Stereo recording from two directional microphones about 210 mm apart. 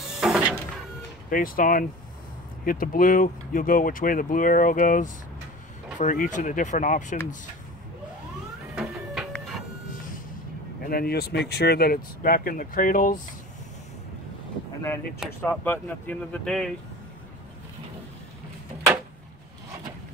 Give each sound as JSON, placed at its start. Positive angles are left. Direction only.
{"t": 0.1, "sound": "a sound", "side_deg": 0}
{"t": 1.3, "sound": "speech", "side_deg": 40}
{"t": 8.7, "sound": "printer", "side_deg": -5}
{"t": 10.9, "sound": "speech", "side_deg": 45}
{"t": 15.1, "sound": "speech", "side_deg": 5}